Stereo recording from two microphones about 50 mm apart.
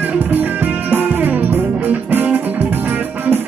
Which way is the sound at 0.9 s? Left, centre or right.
Right.